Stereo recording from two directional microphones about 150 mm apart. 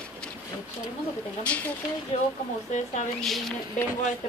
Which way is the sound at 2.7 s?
50° left (ahead or behind).